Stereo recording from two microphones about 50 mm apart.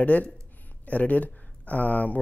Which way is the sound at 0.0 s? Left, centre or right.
Left.